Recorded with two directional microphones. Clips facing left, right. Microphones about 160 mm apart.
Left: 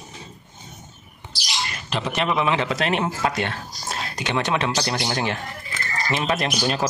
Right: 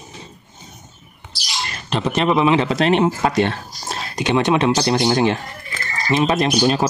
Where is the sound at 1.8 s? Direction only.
30° right (ahead or behind).